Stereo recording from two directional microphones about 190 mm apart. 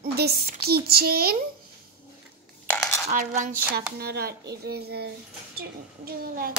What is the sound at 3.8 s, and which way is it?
Speech, 55° right (ahead or behind).